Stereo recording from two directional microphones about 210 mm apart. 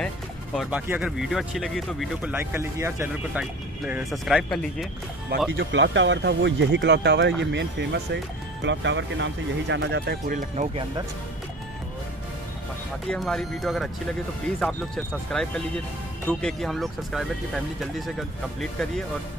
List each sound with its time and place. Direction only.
0.6 s speech: 5° right (ahead or behind)
2.3 s speech: 10° right (ahead or behind)
5.6 s speech: 60° right (ahead or behind); by 10.7 s 40° right (ahead or behind)
13.1 s speech: 5° left (ahead or behind)
15.3 s speech: 5° left (ahead or behind)